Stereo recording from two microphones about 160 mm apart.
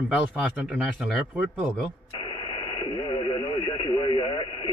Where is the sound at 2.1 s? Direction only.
30° left (ahead or behind).